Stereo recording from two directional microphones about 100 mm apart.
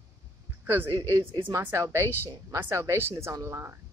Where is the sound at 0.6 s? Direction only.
20° right (ahead or behind).